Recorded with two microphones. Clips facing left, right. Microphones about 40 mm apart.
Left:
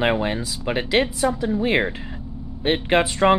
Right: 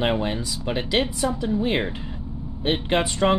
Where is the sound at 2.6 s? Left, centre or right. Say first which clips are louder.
Left 3 dB; left.